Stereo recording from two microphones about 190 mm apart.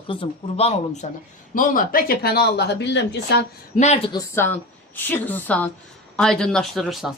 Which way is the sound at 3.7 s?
35° left (ahead or behind).